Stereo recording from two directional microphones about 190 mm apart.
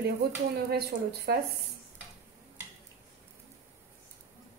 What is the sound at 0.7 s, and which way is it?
Speech, 55° right (ahead or behind).